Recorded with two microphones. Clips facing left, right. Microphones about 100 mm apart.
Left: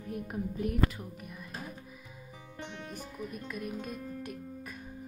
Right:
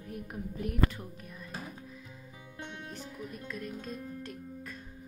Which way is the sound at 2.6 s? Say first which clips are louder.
Left 1 dB; 15° left (ahead or behind).